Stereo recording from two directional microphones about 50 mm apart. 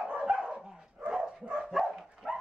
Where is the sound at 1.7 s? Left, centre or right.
Centre.